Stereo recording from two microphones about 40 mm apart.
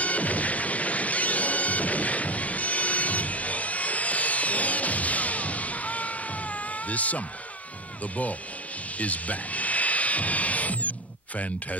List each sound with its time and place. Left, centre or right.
0.0 s music: left
8.0 s speech: left
8.9 s music: left